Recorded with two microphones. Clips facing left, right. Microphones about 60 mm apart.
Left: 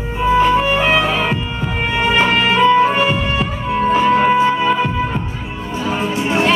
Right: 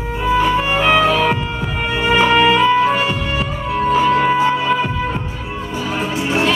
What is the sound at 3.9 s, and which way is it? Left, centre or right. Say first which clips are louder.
Music: left 1 dB; centre.